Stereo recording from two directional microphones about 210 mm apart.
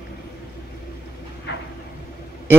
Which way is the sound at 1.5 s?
55° left (ahead or behind).